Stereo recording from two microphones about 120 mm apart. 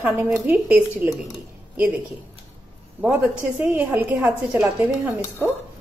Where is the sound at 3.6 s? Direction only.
15° right (ahead or behind).